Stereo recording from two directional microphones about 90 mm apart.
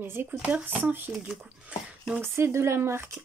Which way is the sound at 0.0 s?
25° right (ahead or behind).